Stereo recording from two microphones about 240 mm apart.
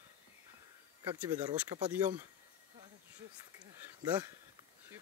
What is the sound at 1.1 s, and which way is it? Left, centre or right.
Speech, centre.